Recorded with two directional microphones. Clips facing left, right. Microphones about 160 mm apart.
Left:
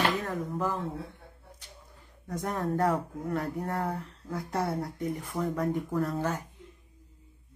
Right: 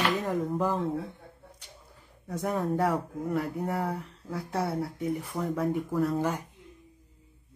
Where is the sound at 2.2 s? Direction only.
10° right (ahead or behind).